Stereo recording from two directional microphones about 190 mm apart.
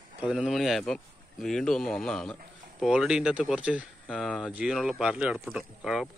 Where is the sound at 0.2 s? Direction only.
5° right (ahead or behind).